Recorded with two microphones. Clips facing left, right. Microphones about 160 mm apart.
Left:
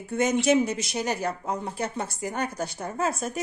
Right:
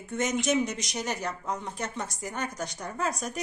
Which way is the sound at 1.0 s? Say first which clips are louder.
Left 4 dB; 30° left (ahead or behind).